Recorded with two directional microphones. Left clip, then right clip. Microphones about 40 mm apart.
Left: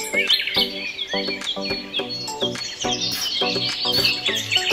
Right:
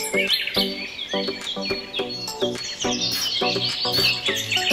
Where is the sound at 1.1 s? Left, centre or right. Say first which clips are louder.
Even; centre.